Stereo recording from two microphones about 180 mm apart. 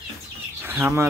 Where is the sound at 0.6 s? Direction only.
10° right (ahead or behind).